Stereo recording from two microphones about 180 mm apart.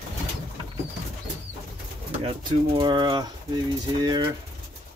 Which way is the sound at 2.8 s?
25° right (ahead or behind).